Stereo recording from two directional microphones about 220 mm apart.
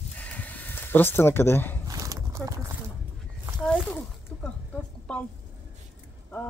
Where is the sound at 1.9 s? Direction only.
15° right (ahead or behind).